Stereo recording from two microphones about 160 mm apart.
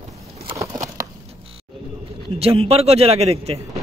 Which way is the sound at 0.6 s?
20° right (ahead or behind).